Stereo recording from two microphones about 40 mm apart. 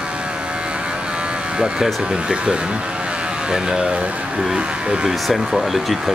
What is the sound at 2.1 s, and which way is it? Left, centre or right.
Speech, centre.